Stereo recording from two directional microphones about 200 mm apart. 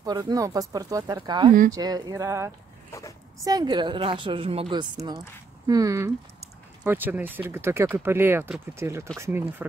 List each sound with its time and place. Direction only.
0.0 s speech: 20° right (ahead or behind)